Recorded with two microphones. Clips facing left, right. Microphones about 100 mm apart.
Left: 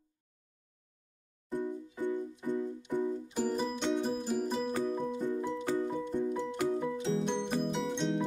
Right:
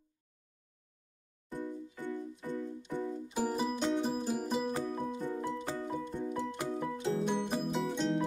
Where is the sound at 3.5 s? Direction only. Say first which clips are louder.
Even; 5° right (ahead or behind).